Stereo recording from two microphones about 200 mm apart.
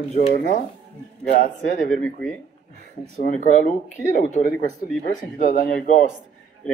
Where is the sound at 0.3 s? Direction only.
40° left (ahead or behind).